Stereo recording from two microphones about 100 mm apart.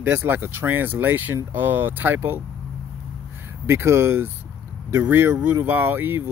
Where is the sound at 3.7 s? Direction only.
25° right (ahead or behind).